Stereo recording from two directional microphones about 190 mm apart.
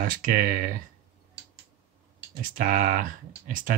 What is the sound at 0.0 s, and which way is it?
Speech, 45° right (ahead or behind).